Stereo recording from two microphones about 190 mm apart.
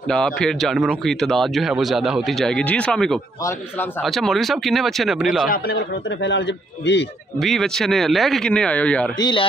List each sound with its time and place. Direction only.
0.1 s speech: 5° left (ahead or behind)
6.2 s a man's voice: 65° left (ahead or behind)
7.3 s speech: centre (ahead or behind)
9.2 s speech: 25° left (ahead or behind)